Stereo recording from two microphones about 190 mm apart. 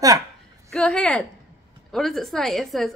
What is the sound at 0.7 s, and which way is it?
A woman's voice, 5° left (ahead or behind).